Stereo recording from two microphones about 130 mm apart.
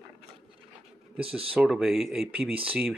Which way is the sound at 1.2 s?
45° right (ahead or behind).